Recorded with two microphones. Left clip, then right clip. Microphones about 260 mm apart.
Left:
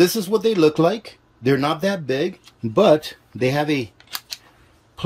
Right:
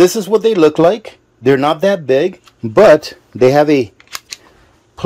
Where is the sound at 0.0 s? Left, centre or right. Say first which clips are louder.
Right 7 dB; centre.